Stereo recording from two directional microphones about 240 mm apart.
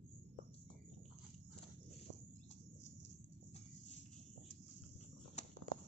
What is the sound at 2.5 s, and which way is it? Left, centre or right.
Bird, left.